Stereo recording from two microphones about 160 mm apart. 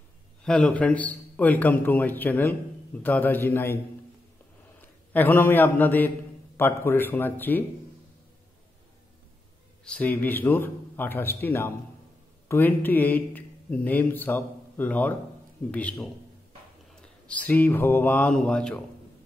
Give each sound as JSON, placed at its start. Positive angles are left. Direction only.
{"t": 0.4, "sound": "a man's voice", "side_deg": 5}
{"t": 4.8, "sound": "a man's voice", "side_deg": 10}
{"t": 9.8, "sound": "a man's voice", "side_deg": 10}